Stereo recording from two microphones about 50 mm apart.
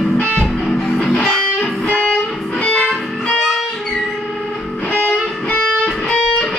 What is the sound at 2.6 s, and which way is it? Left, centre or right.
Music, left.